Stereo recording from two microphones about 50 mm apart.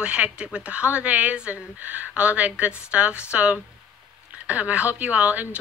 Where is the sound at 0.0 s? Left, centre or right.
Right.